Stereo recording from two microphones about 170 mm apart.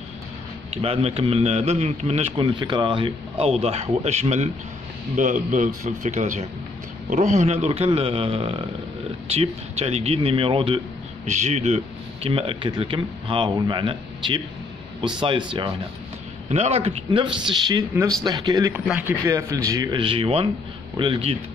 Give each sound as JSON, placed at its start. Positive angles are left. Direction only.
{"t": 0.7, "sound": "a man's voice", "side_deg": -35}
{"t": 11.2, "sound": "a man's voice", "side_deg": -45}
{"t": 16.4, "sound": "a man's voice", "side_deg": -40}